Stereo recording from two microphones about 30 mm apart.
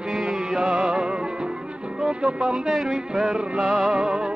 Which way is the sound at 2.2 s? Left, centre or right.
Right.